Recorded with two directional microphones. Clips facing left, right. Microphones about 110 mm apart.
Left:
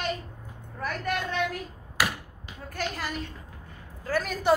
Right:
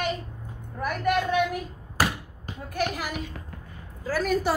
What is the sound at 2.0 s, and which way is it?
Basketball bounce, 35° right (ahead or behind).